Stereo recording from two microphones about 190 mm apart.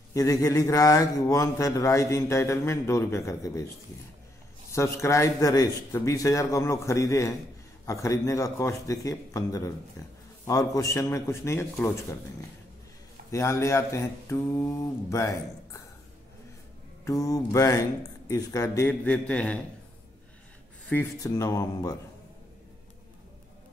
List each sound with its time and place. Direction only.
0.1 s a man's voice: 20° left (ahead or behind)
4.7 s a man's voice: 15° left (ahead or behind)
13.3 s a man's voice: 15° left (ahead or behind)
17.0 s a man's voice: 15° left (ahead or behind)
20.9 s a man's voice: 15° left (ahead or behind)